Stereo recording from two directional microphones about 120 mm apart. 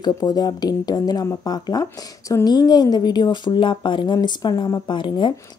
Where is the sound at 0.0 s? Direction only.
35° left (ahead or behind).